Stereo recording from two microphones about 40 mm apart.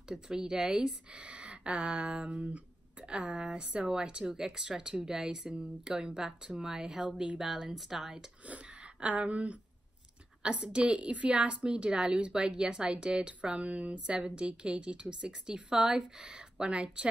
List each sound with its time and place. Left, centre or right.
0.1 s a woman's voice: centre
5.3 s a woman's voice: right
7.4 s speech: centre
8.5 s a woman's voice: right